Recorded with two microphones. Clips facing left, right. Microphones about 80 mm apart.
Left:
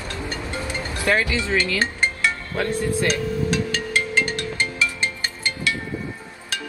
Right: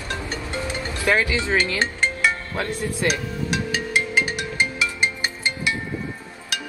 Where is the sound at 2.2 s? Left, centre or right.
Centre.